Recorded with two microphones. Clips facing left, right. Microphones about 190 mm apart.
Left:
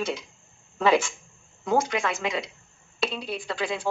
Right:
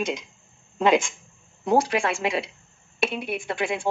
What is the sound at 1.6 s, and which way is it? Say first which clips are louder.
Speech: right 3 dB; 30° right (ahead or behind).